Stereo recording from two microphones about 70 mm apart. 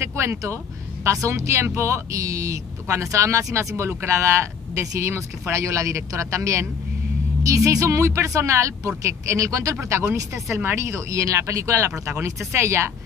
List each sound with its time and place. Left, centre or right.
0.0 s speech: right